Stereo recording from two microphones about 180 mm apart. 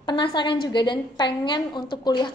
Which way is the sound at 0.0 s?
25° left (ahead or behind).